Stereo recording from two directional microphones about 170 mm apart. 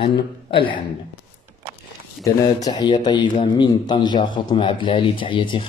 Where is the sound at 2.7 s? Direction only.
25° left (ahead or behind).